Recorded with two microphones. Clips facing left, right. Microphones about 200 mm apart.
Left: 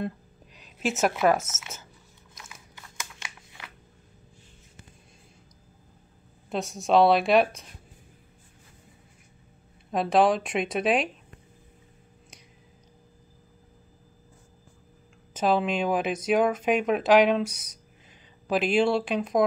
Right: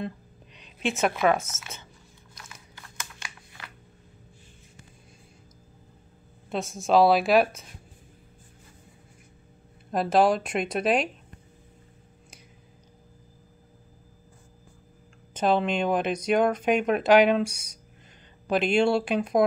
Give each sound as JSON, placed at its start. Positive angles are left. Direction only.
{"t": 0.6, "sound": "a sound", "side_deg": 5}
{"t": 1.5, "sound": "speech", "side_deg": 5}
{"t": 2.3, "sound": "biting", "side_deg": 5}
{"t": 2.7, "sound": "a sound", "side_deg": 20}
{"t": 6.5, "sound": "speech", "side_deg": 0}
{"t": 9.8, "sound": "speech", "side_deg": 0}
{"t": 15.3, "sound": "speech", "side_deg": 5}